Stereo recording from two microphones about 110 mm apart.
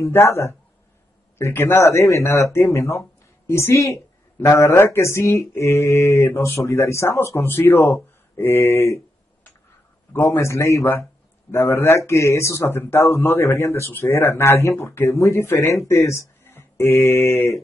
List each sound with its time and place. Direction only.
0.0 s speech: 25° left (ahead or behind)